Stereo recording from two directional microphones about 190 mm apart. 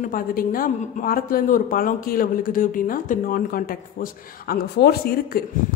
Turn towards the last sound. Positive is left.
turn(degrees=55)  # may be behind; listen again after turning